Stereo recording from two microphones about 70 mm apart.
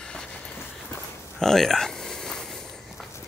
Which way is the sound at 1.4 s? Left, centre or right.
Centre.